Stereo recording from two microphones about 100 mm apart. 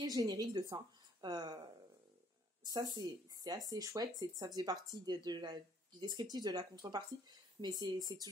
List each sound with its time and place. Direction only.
0.0 s speech: 35° right (ahead or behind)